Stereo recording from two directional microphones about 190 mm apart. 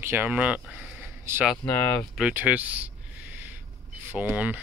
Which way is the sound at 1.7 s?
10° left (ahead or behind).